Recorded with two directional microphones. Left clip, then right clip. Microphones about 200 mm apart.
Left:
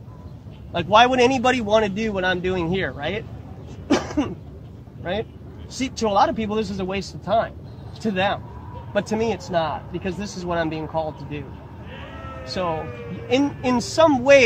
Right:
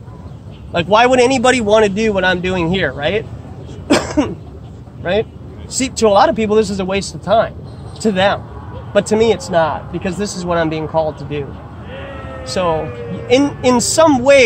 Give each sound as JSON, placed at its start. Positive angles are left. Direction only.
{"t": 0.7, "sound": "speech", "side_deg": -55}
{"t": 3.8, "sound": "cough", "side_deg": -55}
{"t": 5.7, "sound": "speech", "side_deg": -55}
{"t": 12.6, "sound": "speech", "side_deg": -50}